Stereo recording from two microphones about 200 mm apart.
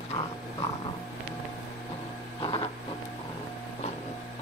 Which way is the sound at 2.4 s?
30° left (ahead or behind).